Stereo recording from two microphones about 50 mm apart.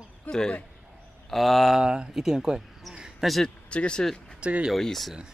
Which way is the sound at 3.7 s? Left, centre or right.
Left.